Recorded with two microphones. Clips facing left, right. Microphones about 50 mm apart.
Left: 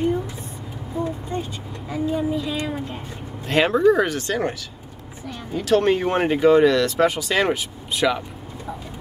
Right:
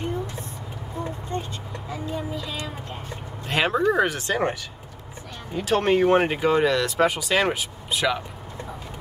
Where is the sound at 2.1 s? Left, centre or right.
Centre.